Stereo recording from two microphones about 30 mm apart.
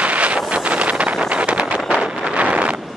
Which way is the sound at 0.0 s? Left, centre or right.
Right.